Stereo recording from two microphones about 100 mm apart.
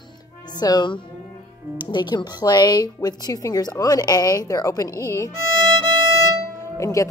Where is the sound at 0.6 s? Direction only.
45° left (ahead or behind).